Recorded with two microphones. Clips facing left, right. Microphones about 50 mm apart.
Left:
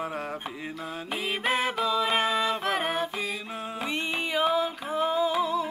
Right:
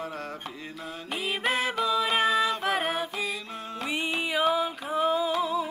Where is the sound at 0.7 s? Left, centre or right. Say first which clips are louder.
Left 1 dB; centre.